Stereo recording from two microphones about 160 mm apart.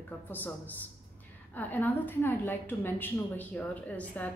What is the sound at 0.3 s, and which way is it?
A woman's voice, 10° left (ahead or behind).